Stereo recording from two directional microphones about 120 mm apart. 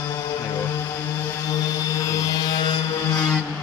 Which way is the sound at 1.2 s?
25° left (ahead or behind).